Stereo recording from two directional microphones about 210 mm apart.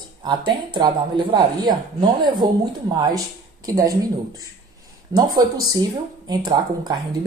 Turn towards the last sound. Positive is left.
turn(degrees=-20)  # may be behind; listen again after turning